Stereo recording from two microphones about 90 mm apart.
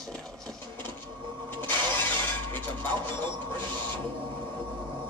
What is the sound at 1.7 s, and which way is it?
Shatter, 20° left (ahead or behind).